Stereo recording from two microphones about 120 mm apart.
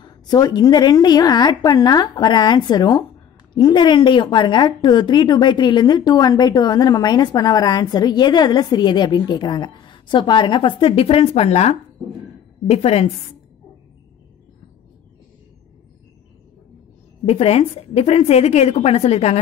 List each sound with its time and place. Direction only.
0.0 s a woman's voice: 35° left (ahead or behind); by 13.1 s 60° left (ahead or behind)
17.3 s a woman's voice: 60° left (ahead or behind)